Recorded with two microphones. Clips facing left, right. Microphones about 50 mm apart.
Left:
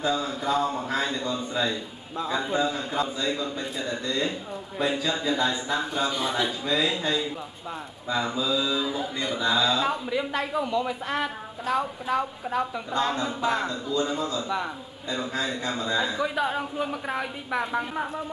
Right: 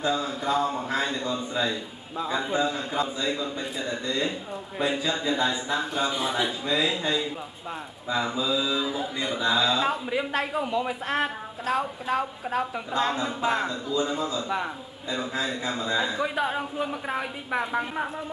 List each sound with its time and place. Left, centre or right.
0.0 s a man's voice: centre
10.0 s a man's voice: centre
12.9 s a man's voice: centre